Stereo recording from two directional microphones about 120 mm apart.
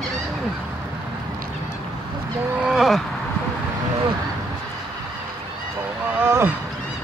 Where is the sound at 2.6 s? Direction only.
5° right (ahead or behind).